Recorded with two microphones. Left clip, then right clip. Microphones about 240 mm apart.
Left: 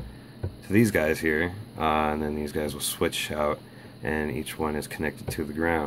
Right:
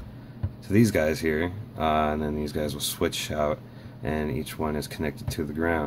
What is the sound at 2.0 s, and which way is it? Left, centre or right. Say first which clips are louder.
Speech: even; left.